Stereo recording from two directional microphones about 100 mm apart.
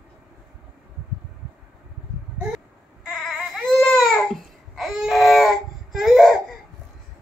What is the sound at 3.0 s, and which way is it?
Baby cry, 5° right (ahead or behind).